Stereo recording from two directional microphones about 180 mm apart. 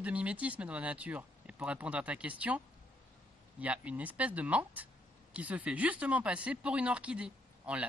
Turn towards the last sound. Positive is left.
turn(degrees=-5)  # may be behind; listen again after turning